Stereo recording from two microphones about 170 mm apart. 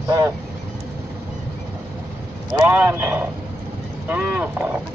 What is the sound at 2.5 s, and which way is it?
A man's voice, 10° right (ahead or behind).